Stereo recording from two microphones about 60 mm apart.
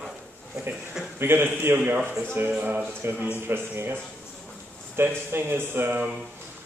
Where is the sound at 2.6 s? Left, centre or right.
Right.